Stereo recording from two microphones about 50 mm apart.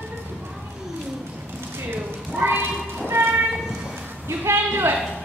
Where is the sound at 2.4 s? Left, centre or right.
Right.